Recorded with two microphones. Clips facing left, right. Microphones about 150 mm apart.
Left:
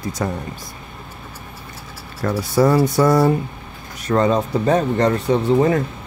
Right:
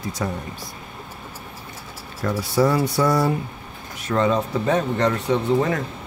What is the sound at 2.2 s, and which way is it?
Speech, 45° left (ahead or behind).